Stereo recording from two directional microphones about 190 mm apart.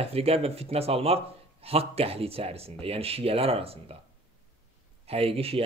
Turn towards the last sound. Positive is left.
turn(degrees=-30)  # may be behind; listen again after turning